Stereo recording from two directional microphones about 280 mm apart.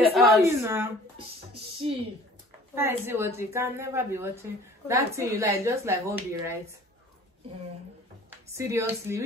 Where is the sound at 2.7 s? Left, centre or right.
Centre.